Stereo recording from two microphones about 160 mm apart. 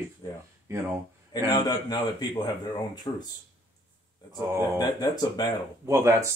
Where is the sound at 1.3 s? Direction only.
25° left (ahead or behind).